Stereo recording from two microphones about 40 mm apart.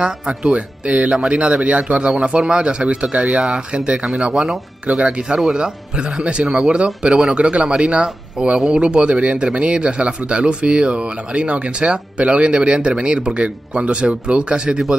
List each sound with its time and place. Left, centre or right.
0.0 s speech: right